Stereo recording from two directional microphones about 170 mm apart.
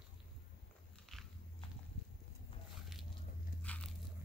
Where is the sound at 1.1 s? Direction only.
Centre (ahead or behind).